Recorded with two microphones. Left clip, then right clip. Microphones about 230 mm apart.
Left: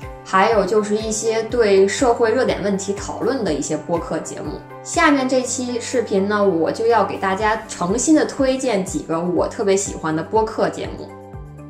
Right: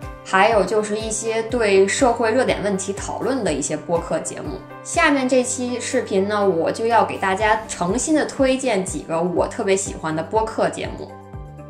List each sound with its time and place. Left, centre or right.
0.3 s a woman's voice: right